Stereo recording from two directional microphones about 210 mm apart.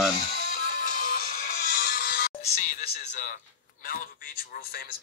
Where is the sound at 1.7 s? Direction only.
45° left (ahead or behind).